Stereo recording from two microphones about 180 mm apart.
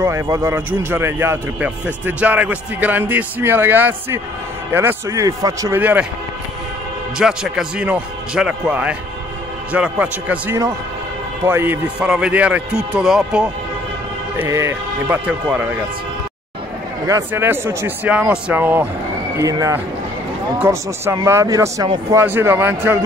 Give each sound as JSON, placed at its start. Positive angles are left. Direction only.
{"t": 0.0, "sound": "a man's voice", "side_deg": -15}
{"t": 7.2, "sound": "a man's voice", "side_deg": -5}
{"t": 14.3, "sound": "a man's voice", "side_deg": -15}
{"t": 17.0, "sound": "a man's voice", "side_deg": -15}